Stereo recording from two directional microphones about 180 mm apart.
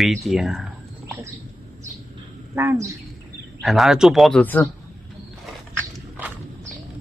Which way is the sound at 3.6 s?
Centre (ahead or behind).